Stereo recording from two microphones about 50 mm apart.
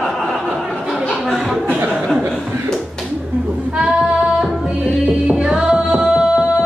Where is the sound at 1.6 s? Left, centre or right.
Right.